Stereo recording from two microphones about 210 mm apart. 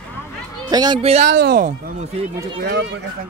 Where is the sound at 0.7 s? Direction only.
20° right (ahead or behind).